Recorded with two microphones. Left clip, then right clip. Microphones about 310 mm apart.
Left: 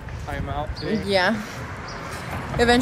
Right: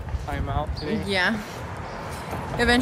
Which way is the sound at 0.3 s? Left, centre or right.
Centre.